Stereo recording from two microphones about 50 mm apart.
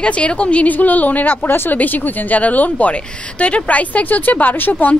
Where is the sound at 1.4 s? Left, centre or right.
Left.